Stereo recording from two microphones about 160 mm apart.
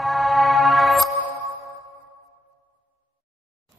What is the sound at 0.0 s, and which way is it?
Music, centre (ahead or behind).